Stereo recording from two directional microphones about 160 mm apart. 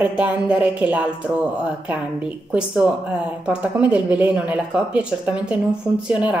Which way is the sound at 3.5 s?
10° right (ahead or behind).